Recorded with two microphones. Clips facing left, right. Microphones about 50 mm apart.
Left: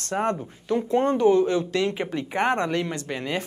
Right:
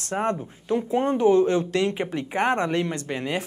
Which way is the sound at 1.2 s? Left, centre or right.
Right.